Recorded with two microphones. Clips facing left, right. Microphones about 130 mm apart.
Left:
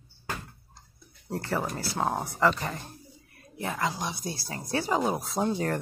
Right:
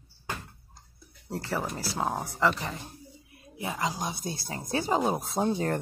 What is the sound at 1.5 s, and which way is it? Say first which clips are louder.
Speech: left 1 dB; centre (ahead or behind).